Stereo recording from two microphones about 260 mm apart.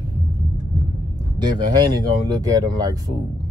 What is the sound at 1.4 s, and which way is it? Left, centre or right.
Speech, centre.